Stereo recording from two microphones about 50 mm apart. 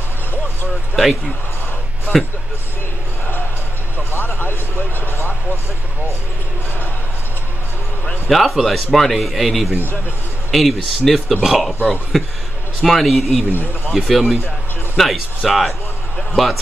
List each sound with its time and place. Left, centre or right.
0.9 s a man's voice: centre
4.1 s speech: left
4.4 s speech: left
8.3 s a man's voice: centre